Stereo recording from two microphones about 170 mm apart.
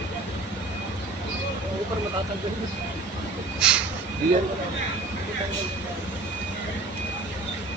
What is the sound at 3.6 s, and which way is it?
Speech, 5° right (ahead or behind).